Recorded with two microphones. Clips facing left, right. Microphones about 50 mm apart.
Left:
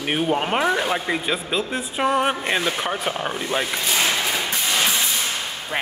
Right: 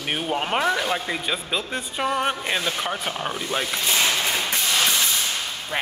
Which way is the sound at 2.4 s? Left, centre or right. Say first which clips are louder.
Left 3 dB; centre.